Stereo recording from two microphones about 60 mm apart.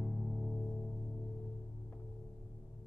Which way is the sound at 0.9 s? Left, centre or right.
Left.